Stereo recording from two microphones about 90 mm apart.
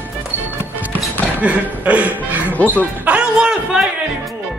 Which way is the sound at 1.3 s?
15° right (ahead or behind).